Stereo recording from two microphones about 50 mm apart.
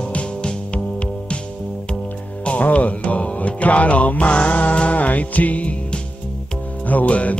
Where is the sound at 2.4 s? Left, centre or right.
Left.